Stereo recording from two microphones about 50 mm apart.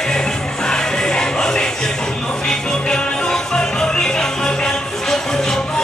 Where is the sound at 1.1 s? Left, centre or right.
Centre.